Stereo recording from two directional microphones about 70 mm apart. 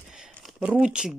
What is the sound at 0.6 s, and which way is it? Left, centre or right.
Speech, centre.